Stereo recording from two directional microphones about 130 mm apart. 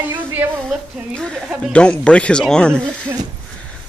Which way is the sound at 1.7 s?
10° left (ahead or behind).